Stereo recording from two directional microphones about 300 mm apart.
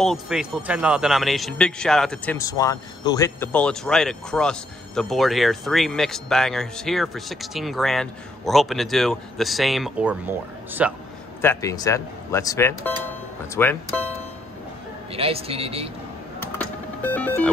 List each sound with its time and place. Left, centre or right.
0.0 s speech: centre
11.4 s speech: centre
15.1 s a man's voice: centre
16.3 s music: centre